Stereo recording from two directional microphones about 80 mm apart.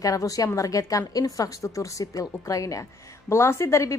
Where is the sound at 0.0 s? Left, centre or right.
Left.